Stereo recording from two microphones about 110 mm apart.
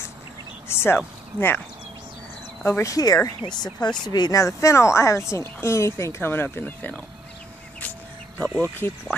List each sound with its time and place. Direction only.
0.7 s a sound: 20° left (ahead or behind)
2.6 s a woman's voice: 25° left (ahead or behind)
8.8 s a woman's voice: 20° left (ahead or behind)